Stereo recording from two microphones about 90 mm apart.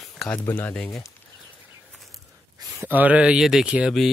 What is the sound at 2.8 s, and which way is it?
Speech, 20° right (ahead or behind).